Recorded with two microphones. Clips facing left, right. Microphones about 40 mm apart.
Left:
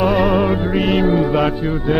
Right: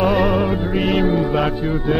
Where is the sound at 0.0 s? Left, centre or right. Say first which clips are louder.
Left 2 dB; centre.